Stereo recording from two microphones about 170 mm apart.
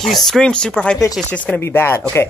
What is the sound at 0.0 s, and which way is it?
Speech, centre (ahead or behind).